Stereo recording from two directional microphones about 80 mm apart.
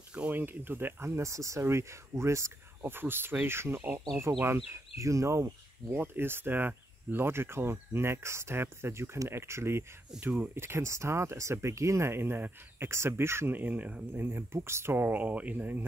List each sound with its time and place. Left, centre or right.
0.1 s speech: centre
4.1 s speech: right